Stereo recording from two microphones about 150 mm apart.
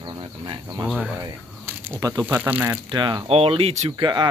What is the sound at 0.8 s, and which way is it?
Speech, centre (ahead or behind).